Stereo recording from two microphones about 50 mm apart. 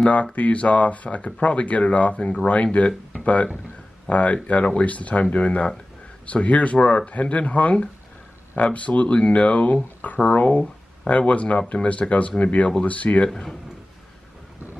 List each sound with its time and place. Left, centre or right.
0.0 s speech: left
4.1 s speech: left
13.3 s a man's voice: centre